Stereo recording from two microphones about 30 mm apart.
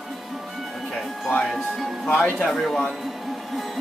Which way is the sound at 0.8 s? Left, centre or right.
Centre.